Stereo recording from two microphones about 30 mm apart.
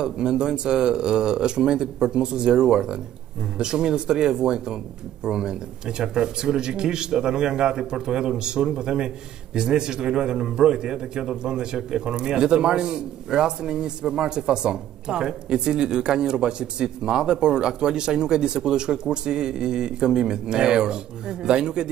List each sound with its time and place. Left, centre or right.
0.0 s a man's voice: right